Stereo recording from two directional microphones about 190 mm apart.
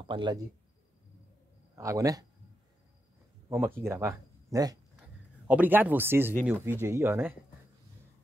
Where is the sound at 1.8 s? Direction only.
15° right (ahead or behind).